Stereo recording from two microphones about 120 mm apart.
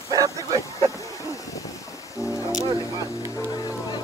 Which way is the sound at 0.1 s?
30° right (ahead or behind).